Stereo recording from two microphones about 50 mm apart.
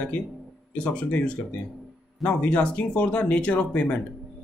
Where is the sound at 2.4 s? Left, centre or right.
Left.